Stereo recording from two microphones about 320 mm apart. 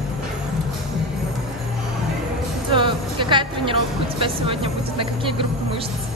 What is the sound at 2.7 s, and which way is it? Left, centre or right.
Music, centre.